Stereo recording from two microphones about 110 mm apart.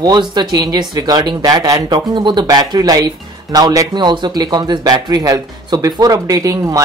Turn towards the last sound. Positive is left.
turn(degrees=-30)  # may be behind; listen again after turning